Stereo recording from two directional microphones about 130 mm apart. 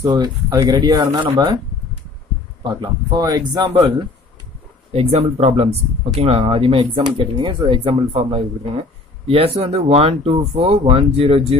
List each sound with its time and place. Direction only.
0.0 s speech: 30° right (ahead or behind)
2.6 s speech: 35° right (ahead or behind)
4.9 s speech: 55° right (ahead or behind)